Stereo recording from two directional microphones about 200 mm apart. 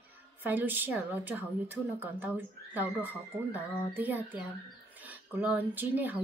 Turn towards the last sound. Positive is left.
turn(degrees=-10)  # may be behind; listen again after turning